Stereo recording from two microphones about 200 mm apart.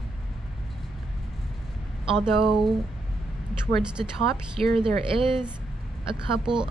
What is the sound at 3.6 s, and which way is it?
Speech, 5° right (ahead or behind).